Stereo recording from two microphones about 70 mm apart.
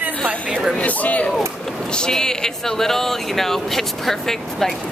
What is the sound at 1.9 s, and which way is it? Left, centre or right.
Speech, centre.